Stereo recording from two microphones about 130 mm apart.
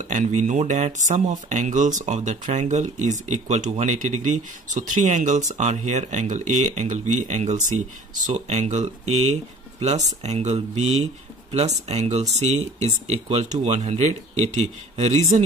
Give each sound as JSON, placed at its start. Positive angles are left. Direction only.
{"t": 0.0, "sound": "speech", "side_deg": -70}